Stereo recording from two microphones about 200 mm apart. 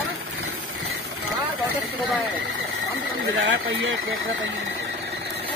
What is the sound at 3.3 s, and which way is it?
Speech, 65° right (ahead or behind).